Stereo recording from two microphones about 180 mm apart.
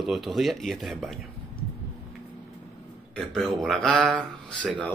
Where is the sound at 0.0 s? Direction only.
Centre (ahead or behind).